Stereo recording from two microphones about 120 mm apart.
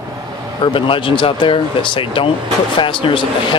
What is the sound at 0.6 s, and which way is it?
Speech, 45° left (ahead or behind).